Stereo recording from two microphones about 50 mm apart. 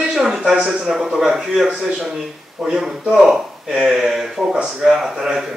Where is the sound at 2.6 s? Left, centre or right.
Centre.